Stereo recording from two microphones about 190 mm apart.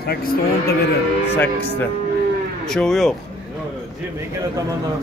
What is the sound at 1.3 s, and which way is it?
Speech, 10° left (ahead or behind).